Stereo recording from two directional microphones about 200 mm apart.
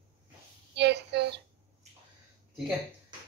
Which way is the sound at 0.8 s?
60° right (ahead or behind).